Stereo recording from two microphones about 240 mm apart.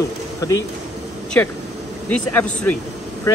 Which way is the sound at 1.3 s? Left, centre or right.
Centre.